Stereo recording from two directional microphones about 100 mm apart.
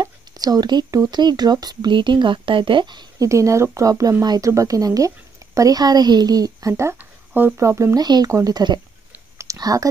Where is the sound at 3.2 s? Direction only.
30° right (ahead or behind).